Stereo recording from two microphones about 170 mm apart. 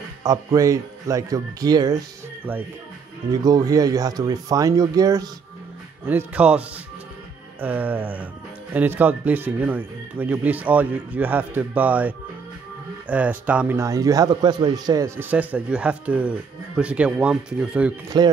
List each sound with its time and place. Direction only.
0.2 s speech: 20° right (ahead or behind)
3.3 s speech: 25° right (ahead or behind)
6.0 s speech: 10° right (ahead or behind)
7.6 s speech: 10° right (ahead or behind)
18.1 s speech: 25° right (ahead or behind)